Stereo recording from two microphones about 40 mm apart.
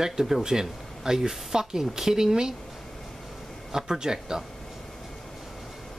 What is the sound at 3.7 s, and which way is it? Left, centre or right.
Speech, centre.